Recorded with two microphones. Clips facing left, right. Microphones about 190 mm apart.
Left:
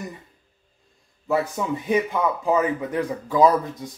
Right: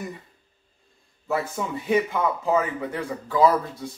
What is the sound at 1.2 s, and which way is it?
Speech, 15° left (ahead or behind).